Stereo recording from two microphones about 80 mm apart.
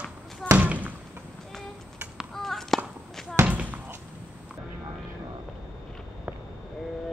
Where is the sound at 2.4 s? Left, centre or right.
Centre.